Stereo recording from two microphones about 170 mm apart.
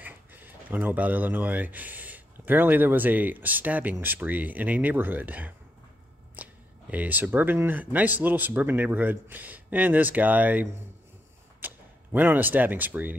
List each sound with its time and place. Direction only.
0.0 s speech: 10° right (ahead or behind)